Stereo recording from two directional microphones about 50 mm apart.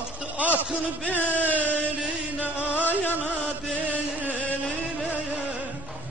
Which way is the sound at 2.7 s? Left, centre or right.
Left.